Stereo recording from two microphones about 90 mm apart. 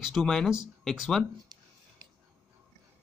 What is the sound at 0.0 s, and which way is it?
Speech, 5° left (ahead or behind).